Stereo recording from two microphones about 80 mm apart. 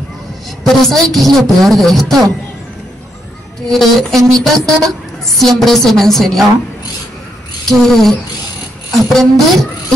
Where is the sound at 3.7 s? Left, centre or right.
Centre.